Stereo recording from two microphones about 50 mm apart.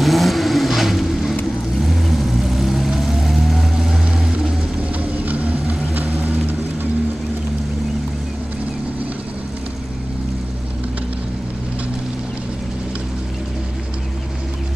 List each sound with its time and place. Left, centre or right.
0.0 s vehicle: centre
5.2 s vehicle: right